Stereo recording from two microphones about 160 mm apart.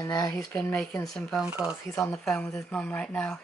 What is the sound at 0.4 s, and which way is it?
Speech, 5° left (ahead or behind).